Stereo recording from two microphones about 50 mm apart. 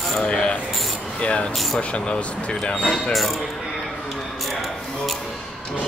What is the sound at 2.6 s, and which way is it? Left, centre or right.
Speech, centre.